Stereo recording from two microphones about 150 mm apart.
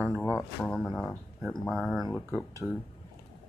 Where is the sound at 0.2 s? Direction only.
15° left (ahead or behind).